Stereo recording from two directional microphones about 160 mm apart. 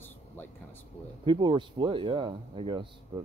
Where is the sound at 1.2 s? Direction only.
30° right (ahead or behind).